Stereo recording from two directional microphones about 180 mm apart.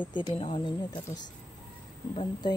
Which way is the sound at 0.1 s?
25° left (ahead or behind).